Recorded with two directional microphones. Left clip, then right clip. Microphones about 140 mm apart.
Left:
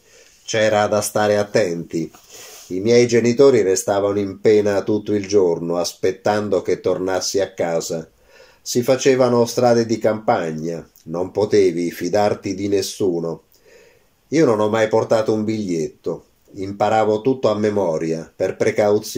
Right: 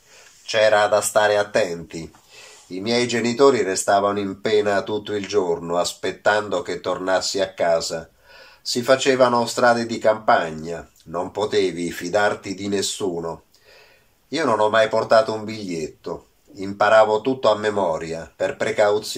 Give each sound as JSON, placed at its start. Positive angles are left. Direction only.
{"t": 0.5, "sound": "speech", "side_deg": 45}
{"t": 14.3, "sound": "speech", "side_deg": 45}